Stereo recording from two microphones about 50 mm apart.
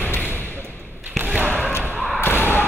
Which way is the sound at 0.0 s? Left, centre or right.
Left.